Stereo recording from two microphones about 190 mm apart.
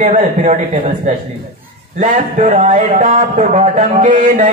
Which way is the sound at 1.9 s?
40° right (ahead or behind).